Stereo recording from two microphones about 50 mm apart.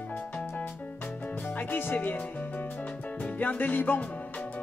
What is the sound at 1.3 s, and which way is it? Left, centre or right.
Music, left.